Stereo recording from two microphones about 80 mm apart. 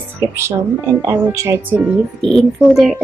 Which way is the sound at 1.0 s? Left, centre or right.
Right.